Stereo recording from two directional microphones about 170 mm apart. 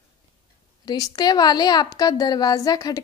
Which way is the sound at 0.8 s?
20° left (ahead or behind).